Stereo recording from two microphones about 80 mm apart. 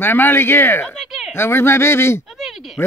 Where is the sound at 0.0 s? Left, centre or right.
Left.